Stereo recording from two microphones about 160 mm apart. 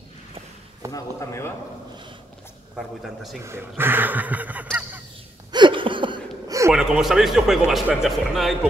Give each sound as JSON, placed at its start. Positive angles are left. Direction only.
{"t": 0.9, "sound": "speech", "side_deg": 20}
{"t": 3.0, "sound": "speech", "side_deg": 0}
{"t": 3.4, "sound": "speech", "side_deg": -15}
{"t": 5.5, "sound": "a sound", "side_deg": -30}
{"t": 6.7, "sound": "speech", "side_deg": -5}